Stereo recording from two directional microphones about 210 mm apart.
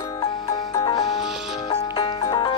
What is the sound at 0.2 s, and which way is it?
Music, 20° left (ahead or behind).